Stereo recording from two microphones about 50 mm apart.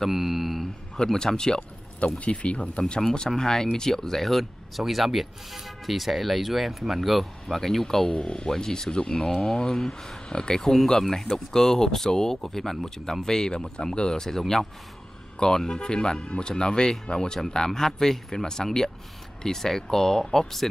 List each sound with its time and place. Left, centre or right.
0.0 s speech: centre
0.9 s speech: centre
2.1 s speech: left
3.0 s speech: centre
8.1 s speech: left